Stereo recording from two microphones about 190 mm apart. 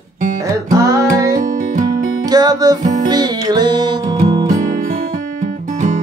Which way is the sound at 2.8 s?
40° right (ahead or behind).